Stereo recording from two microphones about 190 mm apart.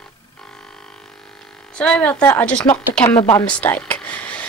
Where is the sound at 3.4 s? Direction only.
5° left (ahead or behind).